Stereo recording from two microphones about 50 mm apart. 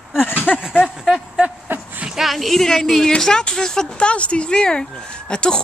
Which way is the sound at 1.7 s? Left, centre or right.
Right.